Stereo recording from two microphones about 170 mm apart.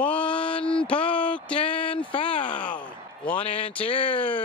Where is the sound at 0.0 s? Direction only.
5° left (ahead or behind).